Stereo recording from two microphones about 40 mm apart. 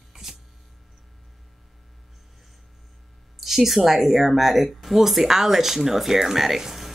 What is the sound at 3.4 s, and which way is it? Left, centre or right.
Speech, centre.